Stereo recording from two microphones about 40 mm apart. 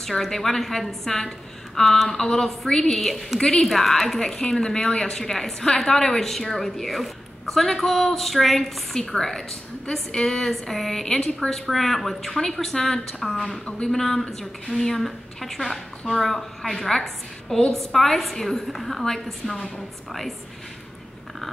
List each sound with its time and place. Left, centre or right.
0.0 s a woman's voice: centre
4.2 s a woman's voice: centre
13.5 s a woman's voice: centre